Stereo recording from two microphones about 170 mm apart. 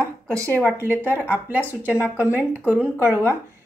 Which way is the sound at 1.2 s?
10° right (ahead or behind).